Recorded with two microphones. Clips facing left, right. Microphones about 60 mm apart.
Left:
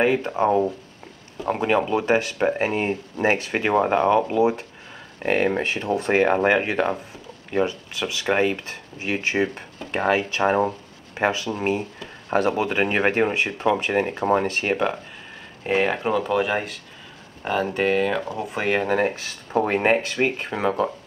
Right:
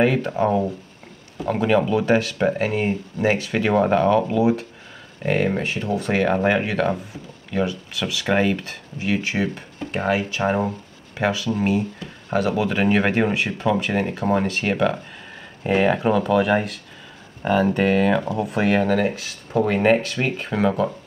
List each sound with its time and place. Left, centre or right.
0.0 s speech: centre
2.7 s speech: left
8.0 s speech: left
15.6 s speech: centre
17.7 s speech: centre
18.9 s speech: left